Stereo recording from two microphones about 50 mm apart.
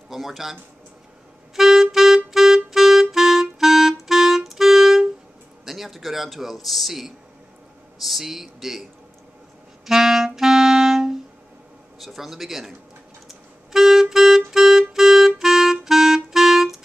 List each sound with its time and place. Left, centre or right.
0.1 s a man's voice: centre
1.5 s clarinet: centre
5.7 s a man's voice: centre
9.8 s clarinet: centre
12.0 s a man's voice: centre
13.3 s clarinet: centre